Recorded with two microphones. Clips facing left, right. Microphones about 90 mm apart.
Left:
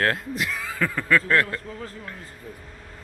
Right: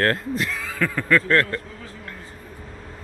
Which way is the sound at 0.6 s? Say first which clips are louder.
Right 1 dB; 20° left (ahead or behind).